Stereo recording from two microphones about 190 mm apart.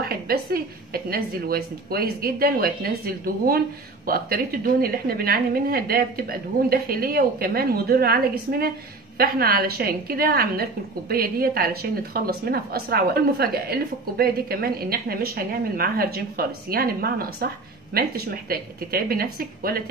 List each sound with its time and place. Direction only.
0.0 s a woman's voice: 55° right (ahead or behind)